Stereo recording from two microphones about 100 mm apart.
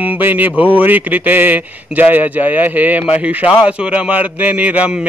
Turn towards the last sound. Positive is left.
turn(degrees=-15)  # may be behind; listen again after turning